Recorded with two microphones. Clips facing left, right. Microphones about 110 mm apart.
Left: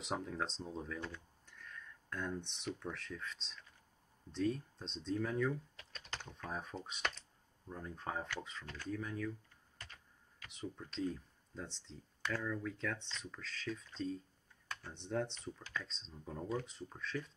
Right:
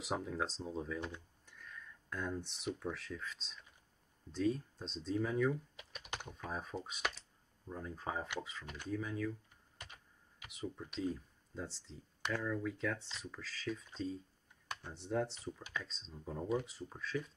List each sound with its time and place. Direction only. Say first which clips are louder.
0.0 s speech: right 2 dB; 5° right (ahead or behind)
6.3 s speech: right 1 dB; centre (ahead or behind)
9.8 s computer keyboard: right 1 dB; 15° right (ahead or behind)
10.5 s speech: right 2 dB; 10° right (ahead or behind)